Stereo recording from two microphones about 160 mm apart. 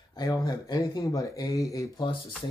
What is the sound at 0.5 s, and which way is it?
Speech, 20° left (ahead or behind).